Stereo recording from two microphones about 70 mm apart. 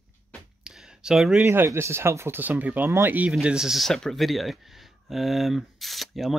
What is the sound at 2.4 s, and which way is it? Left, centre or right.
Speech, right.